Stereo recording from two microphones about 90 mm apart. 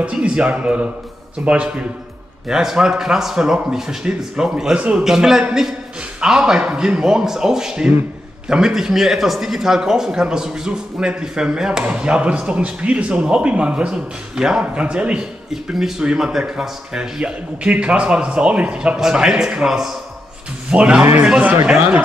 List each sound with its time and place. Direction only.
0.0 s speech: 15° right (ahead or behind)